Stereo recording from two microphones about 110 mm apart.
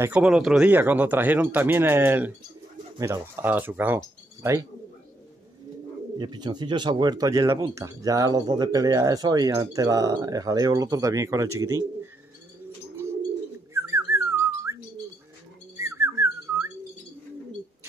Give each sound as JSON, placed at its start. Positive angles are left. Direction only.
{"t": 0.0, "sound": "speech", "side_deg": -10}
{"t": 6.1, "sound": "speech", "side_deg": -40}
{"t": 13.7, "sound": "whistling", "side_deg": -25}